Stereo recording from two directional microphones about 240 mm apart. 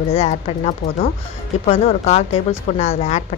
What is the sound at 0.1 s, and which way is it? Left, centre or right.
Speech, left.